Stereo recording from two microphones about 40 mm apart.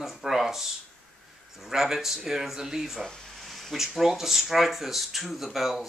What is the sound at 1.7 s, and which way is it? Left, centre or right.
Speech, centre.